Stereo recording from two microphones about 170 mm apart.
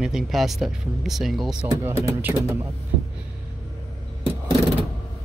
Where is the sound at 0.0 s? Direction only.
Centre (ahead or behind).